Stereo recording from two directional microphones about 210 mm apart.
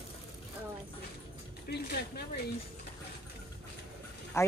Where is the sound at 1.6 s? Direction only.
50° left (ahead or behind).